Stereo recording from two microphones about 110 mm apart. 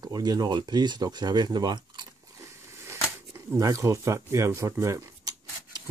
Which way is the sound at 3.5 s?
30° right (ahead or behind).